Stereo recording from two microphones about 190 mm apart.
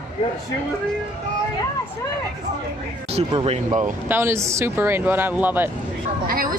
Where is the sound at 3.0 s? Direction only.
35° right (ahead or behind).